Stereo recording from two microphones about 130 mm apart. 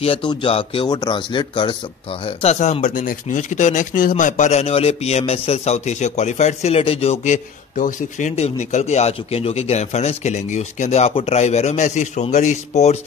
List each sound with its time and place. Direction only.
0.0 s speech: 45° left (ahead or behind)
0.8 s speech: 30° left (ahead or behind)
2.2 s speech: 55° left (ahead or behind); by 4.1 s 80° left
4.2 s speech: 70° left (ahead or behind); by 7.3 s 55° left (ahead or behind)
7.7 s speech: 80° left; by 12.9 s 60° left (ahead or behind)